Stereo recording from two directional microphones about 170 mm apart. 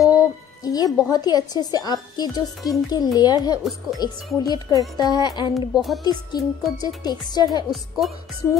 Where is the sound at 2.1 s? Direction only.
25° left (ahead or behind).